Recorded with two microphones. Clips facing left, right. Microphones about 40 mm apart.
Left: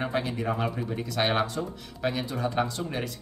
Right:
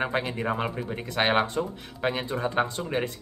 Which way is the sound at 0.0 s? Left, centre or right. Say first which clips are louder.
Right 1 dB; right.